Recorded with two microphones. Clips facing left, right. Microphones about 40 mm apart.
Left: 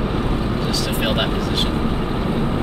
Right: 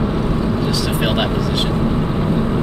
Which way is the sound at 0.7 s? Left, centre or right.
Centre.